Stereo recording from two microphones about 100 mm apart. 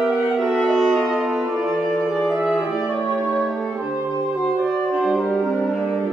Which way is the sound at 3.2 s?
Centre (ahead or behind).